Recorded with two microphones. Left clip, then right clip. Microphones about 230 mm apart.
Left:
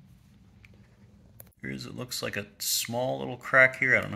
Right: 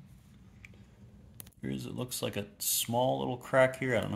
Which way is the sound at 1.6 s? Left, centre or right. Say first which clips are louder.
Left 1 dB; centre.